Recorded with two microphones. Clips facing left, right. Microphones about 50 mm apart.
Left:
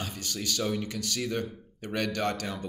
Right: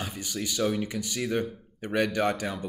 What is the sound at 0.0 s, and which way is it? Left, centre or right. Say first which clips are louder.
Speech: right 2 dB; centre.